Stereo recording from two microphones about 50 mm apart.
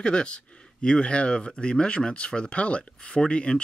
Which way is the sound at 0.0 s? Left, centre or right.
Left.